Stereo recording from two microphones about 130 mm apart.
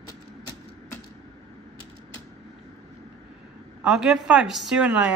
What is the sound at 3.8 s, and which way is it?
A woman's voice, 5° right (ahead or behind).